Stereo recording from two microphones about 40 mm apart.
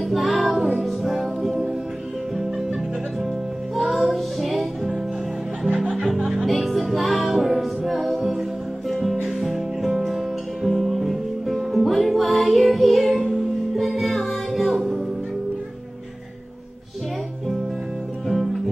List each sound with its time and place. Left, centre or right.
0.0 s music: centre
5.7 s music: centre
6.0 s music: centre
8.8 s music: centre
9.1 s music: centre
18.3 s music: centre